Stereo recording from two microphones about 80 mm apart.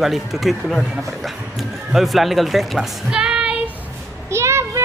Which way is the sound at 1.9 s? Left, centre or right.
Centre.